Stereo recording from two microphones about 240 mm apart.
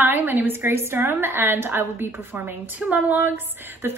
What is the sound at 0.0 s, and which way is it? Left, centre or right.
A woman's voice, centre.